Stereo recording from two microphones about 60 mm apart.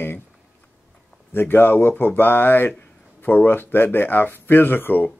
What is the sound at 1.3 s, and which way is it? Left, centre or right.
Speech, left.